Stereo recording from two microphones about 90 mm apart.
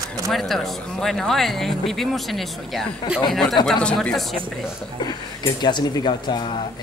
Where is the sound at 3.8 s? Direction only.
10° left (ahead or behind).